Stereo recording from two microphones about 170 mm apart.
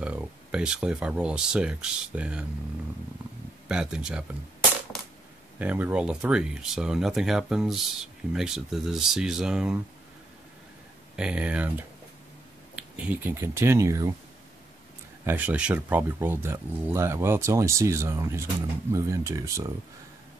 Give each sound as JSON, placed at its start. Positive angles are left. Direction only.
{"t": 0.0, "sound": "speech", "side_deg": -5}
{"t": 3.6, "sound": "speech", "side_deg": -5}
{"t": 5.6, "sound": "speech", "side_deg": -10}
{"t": 11.1, "sound": "speech", "side_deg": -5}
{"t": 15.2, "sound": "speech", "side_deg": -10}